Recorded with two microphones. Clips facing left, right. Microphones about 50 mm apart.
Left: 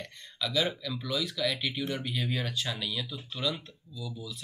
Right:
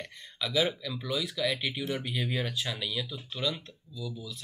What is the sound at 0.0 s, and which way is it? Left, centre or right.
Speech, centre.